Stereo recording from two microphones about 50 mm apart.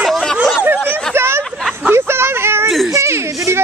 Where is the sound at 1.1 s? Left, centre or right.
Right.